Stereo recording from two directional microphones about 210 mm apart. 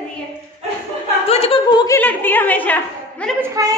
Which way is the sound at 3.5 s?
15° right (ahead or behind).